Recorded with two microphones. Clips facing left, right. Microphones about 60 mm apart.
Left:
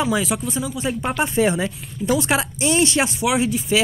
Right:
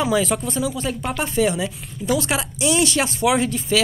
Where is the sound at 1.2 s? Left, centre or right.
Left.